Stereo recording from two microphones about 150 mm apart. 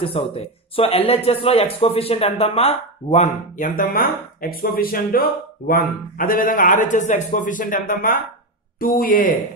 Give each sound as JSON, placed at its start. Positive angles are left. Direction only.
{"t": 0.0, "sound": "speech", "side_deg": 40}
{"t": 3.5, "sound": "speech", "side_deg": 60}